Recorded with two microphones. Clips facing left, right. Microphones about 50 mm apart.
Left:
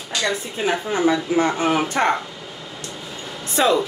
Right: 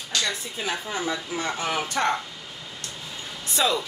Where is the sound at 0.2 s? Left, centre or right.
Left.